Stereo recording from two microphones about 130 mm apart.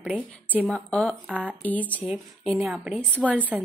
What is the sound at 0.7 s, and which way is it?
A woman's voice, 5° left (ahead or behind).